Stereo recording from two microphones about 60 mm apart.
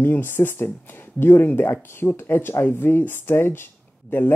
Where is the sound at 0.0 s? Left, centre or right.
Left.